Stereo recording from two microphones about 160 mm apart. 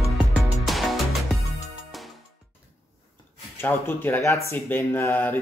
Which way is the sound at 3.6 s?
10° left (ahead or behind).